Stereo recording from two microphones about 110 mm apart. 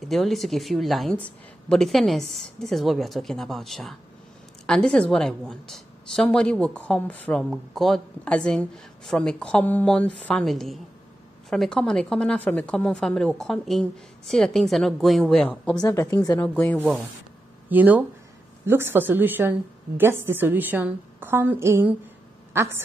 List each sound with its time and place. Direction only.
0.0 s a woman's voice: centre (ahead or behind)
7.4 s speech: centre (ahead or behind)
10.4 s a woman's voice: centre (ahead or behind)
15.8 s a woman's voice: 25° left (ahead or behind)
16.3 s speech: 10° left (ahead or behind)
17.6 s a woman's voice: 15° right (ahead or behind)